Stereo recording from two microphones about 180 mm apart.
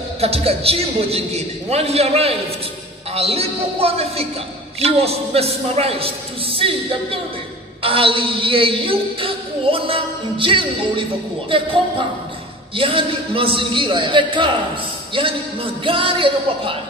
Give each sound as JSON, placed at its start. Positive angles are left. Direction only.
{"t": 0.2, "sound": "a man's voice", "side_deg": -35}
{"t": 12.7, "sound": "a woman's voice", "side_deg": -30}